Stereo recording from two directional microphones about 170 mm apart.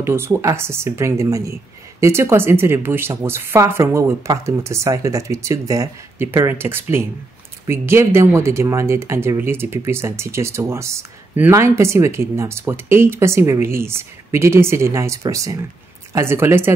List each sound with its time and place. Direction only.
0.0 s speech: 15° right (ahead or behind)